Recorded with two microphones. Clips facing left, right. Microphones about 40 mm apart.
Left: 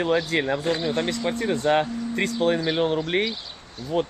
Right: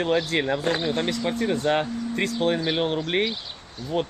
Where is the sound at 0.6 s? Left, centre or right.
Right.